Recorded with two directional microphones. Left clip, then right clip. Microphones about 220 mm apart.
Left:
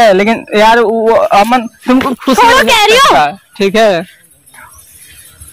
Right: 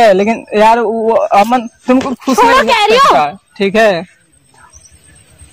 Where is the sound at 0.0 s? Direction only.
15° left (ahead or behind).